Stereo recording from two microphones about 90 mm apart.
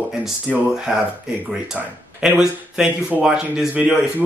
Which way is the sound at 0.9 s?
5° right (ahead or behind).